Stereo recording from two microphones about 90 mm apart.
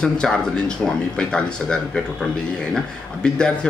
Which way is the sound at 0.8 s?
10° left (ahead or behind).